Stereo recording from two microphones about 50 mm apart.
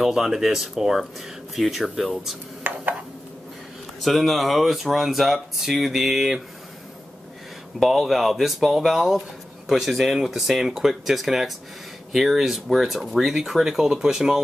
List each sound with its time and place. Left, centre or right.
0.0 s speech: centre
2.6 s a sound: right
4.0 s speech: centre
7.8 s speech: centre